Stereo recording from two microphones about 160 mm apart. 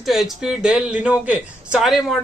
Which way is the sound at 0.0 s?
Centre (ahead or behind).